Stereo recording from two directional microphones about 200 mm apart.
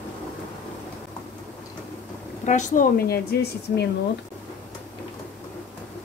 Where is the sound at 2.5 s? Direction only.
40° left (ahead or behind).